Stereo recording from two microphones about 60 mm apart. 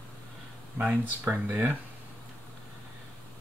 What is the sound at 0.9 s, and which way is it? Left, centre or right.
Speech, right.